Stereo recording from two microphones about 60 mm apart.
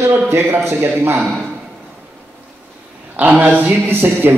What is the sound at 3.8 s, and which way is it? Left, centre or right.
Speech, right.